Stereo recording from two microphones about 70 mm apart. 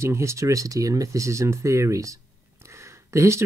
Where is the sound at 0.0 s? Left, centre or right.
Right.